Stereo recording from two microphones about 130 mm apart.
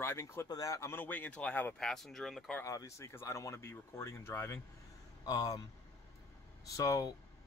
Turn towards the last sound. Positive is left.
turn(degrees=25)  # may be behind; listen again after turning